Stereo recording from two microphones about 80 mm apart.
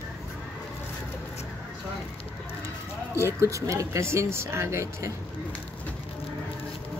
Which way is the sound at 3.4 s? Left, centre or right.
Right.